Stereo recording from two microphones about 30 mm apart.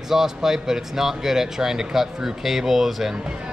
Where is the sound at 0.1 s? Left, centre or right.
Centre.